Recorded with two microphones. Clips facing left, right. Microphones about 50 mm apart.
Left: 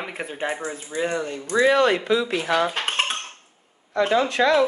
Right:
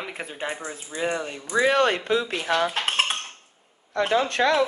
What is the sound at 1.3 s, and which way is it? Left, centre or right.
Speech, left.